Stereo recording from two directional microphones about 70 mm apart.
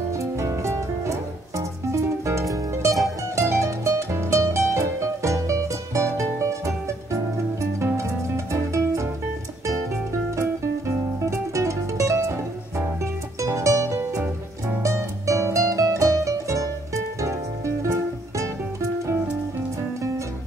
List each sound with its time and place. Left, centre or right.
0.2 s music: right
10.3 s music: right